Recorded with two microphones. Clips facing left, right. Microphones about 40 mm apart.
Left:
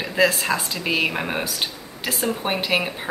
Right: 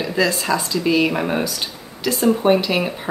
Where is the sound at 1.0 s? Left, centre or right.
Centre.